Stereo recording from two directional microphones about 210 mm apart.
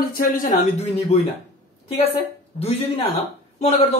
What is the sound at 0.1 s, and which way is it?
A woman's voice, 40° left (ahead or behind).